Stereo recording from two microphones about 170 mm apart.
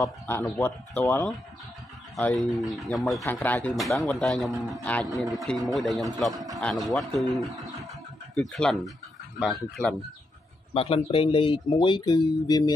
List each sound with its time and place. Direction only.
0.0 s speech: 15° left (ahead or behind)
2.6 s a man's voice: centre (ahead or behind)
6.3 s speech: 20° right (ahead or behind)
6.6 s a man's voice: centre (ahead or behind)
10.7 s speech: 35° left (ahead or behind)